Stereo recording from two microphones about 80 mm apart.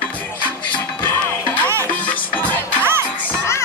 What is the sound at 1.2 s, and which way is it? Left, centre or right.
Music, centre.